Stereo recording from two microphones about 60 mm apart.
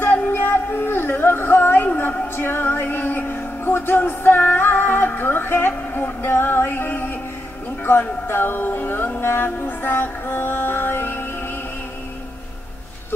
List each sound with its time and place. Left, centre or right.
0.3 s music: left
8.3 s music: left